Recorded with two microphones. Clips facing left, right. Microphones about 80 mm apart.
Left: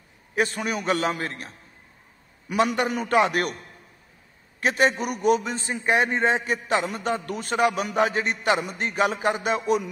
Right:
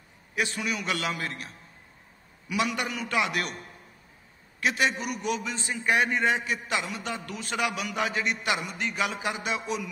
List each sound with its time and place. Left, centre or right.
0.4 s a man's voice: left
4.6 s a man's voice: left